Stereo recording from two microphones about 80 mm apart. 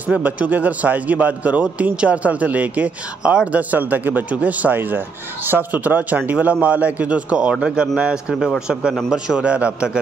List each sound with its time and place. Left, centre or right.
0.0 s a man's voice: centre